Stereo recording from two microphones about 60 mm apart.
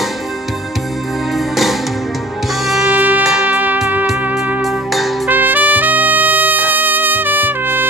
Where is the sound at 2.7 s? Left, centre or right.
Centre.